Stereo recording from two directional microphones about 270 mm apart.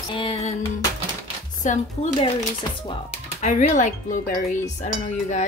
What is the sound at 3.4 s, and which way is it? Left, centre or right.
Speech, left.